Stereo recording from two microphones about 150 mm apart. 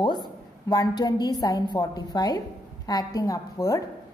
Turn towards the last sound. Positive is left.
turn(degrees=25)  # may be behind; listen again after turning